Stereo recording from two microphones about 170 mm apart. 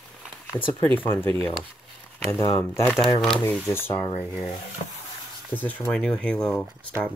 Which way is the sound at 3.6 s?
10° left (ahead or behind).